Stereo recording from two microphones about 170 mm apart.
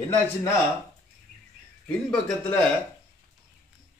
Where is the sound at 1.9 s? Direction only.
10° left (ahead or behind).